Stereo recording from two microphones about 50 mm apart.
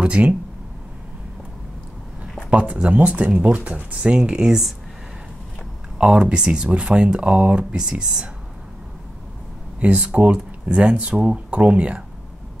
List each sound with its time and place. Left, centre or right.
0.0 s speech: right
2.5 s speech: right
5.9 s speech: right
9.8 s speech: right